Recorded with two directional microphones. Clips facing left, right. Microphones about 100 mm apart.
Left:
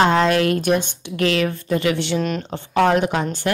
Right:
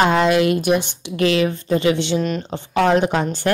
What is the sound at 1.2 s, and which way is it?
A woman's voice, 20° right (ahead or behind).